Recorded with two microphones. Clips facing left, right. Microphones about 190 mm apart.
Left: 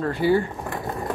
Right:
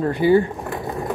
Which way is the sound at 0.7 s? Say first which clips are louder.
Right 2 dB; centre (ahead or behind).